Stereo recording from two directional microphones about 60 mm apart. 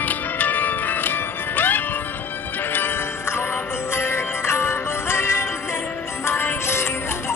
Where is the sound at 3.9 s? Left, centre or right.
Left.